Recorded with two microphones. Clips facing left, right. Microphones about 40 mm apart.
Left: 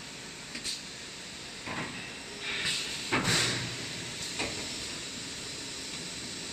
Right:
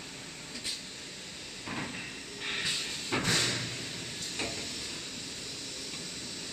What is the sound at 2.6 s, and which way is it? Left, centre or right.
Vehicle, centre.